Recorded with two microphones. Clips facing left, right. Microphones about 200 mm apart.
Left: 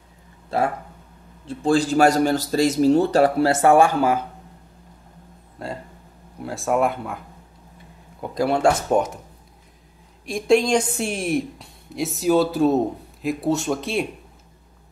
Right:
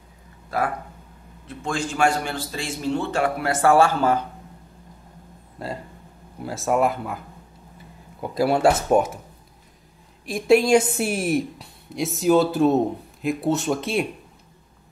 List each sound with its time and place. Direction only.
0.5 s speech: 25° left (ahead or behind)
5.6 s a woman's voice: centre (ahead or behind)
10.2 s a woman's voice: 5° right (ahead or behind)